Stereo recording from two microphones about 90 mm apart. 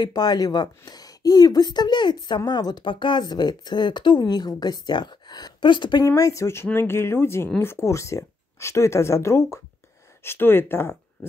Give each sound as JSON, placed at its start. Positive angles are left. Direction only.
{"t": 0.0, "sound": "speech", "side_deg": 50}
{"t": 6.0, "sound": "speech", "side_deg": 40}